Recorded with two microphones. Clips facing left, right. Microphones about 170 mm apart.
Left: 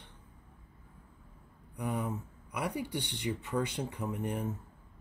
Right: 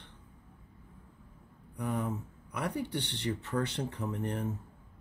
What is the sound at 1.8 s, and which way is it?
Speech, 10° left (ahead or behind).